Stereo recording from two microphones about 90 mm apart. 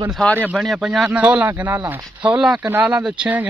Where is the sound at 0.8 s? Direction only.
5° right (ahead or behind).